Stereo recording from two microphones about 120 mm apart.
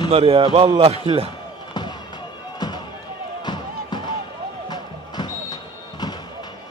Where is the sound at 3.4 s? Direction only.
40° left (ahead or behind).